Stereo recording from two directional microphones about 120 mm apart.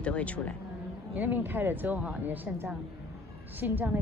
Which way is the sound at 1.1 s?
15° right (ahead or behind).